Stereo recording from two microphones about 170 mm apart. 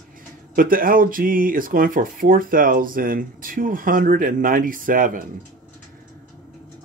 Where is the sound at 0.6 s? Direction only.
55° right (ahead or behind).